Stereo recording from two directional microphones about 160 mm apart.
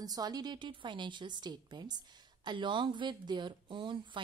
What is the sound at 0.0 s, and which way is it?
Speech, 25° right (ahead or behind).